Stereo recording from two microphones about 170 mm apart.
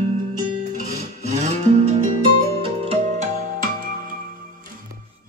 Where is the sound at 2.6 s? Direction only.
35° right (ahead or behind).